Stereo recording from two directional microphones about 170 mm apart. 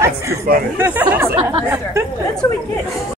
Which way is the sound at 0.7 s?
10° right (ahead or behind).